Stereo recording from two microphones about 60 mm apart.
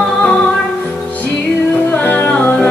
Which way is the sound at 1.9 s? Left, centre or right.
Left.